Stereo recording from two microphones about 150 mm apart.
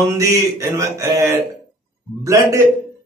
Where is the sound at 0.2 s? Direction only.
20° right (ahead or behind).